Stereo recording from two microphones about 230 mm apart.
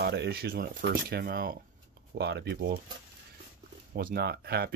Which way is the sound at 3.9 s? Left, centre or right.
Right.